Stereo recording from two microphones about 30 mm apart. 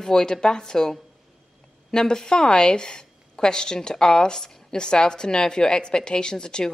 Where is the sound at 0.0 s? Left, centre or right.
Left.